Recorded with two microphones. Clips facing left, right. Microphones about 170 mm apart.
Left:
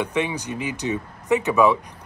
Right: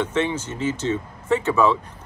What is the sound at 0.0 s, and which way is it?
Speech, 15° left (ahead or behind).